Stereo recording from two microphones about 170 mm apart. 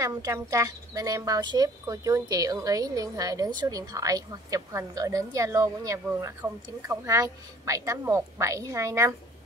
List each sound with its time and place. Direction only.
0.0 s speech: 20° right (ahead or behind)